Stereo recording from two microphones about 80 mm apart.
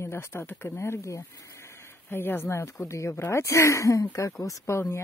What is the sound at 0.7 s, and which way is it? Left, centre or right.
Speech, left.